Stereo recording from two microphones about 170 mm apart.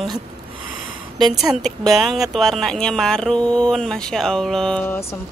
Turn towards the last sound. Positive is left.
turn(degrees=10)  # may be behind; listen again after turning